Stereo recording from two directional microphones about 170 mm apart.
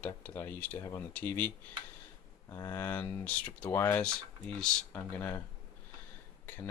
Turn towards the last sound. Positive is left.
turn(degrees=10)  # may be behind; listen again after turning